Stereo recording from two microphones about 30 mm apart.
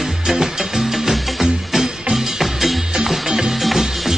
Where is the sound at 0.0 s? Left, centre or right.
Centre.